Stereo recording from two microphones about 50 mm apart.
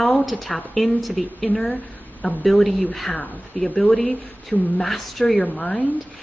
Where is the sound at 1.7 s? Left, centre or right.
Left.